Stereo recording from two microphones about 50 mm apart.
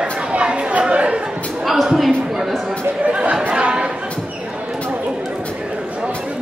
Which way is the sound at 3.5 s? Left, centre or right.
Right.